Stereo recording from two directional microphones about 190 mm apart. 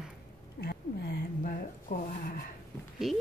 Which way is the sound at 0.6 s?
60° left (ahead or behind).